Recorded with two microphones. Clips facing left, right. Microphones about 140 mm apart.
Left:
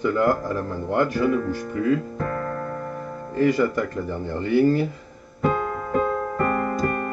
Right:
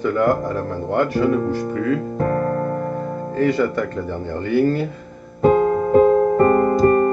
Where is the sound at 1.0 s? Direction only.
60° right (ahead or behind).